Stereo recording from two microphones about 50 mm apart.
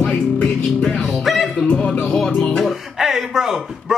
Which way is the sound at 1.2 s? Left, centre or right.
Centre.